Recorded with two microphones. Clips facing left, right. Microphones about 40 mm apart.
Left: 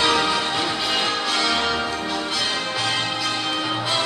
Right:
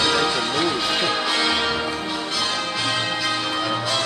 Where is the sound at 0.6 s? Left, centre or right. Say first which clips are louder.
Right 1 dB; centre.